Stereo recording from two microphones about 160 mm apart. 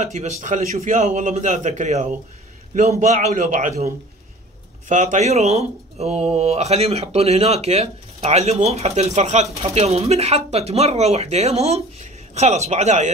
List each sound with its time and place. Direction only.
0.0 s a man's voice: 45° right (ahead or behind)